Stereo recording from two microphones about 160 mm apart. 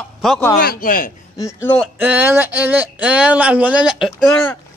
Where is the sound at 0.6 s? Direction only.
65° left (ahead or behind).